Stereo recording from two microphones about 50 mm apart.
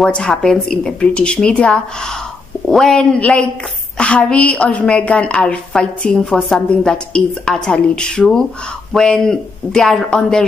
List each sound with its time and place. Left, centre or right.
0.1 s speech: centre
1.1 s a woman's voice: left